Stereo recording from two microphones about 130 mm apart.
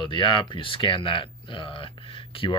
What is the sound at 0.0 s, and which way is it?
Speech, 40° left (ahead or behind).